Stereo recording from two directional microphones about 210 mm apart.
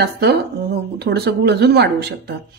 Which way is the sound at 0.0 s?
50° right (ahead or behind).